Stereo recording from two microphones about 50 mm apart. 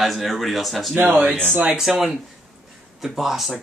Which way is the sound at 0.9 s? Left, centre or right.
Right.